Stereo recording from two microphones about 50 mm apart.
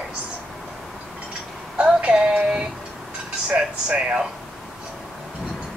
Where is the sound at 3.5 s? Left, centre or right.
Right.